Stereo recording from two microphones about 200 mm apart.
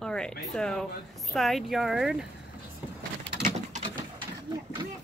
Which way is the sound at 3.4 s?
35° right (ahead or behind).